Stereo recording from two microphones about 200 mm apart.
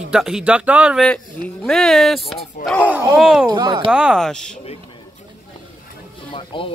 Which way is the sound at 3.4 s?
20° right (ahead or behind).